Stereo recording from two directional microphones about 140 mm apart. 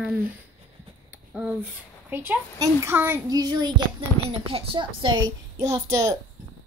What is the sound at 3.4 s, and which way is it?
A woman's voice, 30° right (ahead or behind).